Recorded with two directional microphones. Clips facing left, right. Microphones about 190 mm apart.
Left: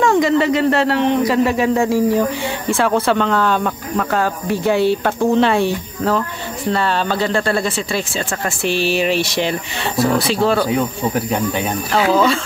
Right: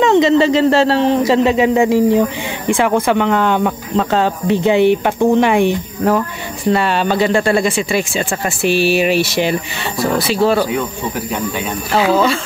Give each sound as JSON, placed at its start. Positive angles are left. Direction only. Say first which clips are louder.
{"t": 0.0, "sound": "speech", "louder": "right 3 dB", "side_deg": -20}
{"t": 11.9, "sound": "speech", "louder": "right 1 dB", "side_deg": -5}